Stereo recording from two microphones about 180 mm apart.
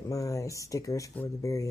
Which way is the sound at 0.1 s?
20° left (ahead or behind).